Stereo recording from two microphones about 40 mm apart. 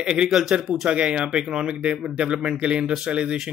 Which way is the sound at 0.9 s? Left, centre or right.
Right.